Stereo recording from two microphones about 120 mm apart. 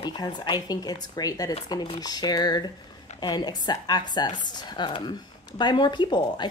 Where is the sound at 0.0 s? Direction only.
35° left (ahead or behind).